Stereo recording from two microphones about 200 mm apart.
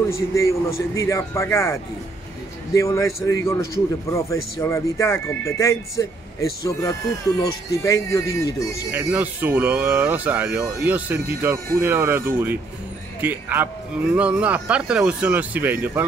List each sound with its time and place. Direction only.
0.1 s speech: 15° left (ahead or behind)
8.9 s speech: 10° right (ahead or behind)